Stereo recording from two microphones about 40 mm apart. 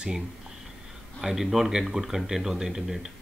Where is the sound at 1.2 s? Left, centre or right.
Centre.